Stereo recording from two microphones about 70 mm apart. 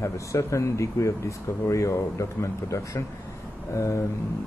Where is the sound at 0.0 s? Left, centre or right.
Left.